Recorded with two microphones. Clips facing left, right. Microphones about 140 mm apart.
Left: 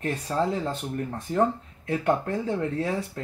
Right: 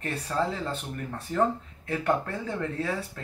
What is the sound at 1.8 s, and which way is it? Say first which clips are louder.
Speech: left 3 dB; 15° left (ahead or behind).